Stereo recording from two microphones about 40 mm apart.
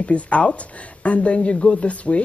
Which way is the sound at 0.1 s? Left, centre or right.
Left.